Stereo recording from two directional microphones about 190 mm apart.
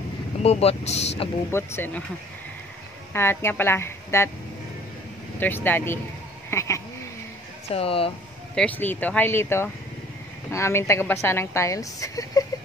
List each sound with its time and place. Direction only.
0.4 s speech: 35° left (ahead or behind)
1.5 s a woman's voice: 10° left (ahead or behind)
3.1 s a woman's voice: 10° left (ahead or behind)
5.4 s a woman's voice: 10° left (ahead or behind)
6.5 s a sound: 15° left (ahead or behind)
7.7 s speech: 30° left (ahead or behind)
8.5 s a woman's voice: 10° left (ahead or behind)